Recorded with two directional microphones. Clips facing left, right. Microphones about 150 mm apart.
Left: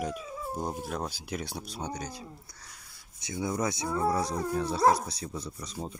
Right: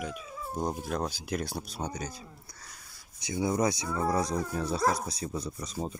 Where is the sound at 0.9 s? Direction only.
5° left (ahead or behind).